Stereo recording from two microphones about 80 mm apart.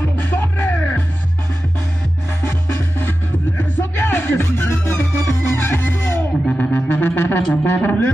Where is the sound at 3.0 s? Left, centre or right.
Left.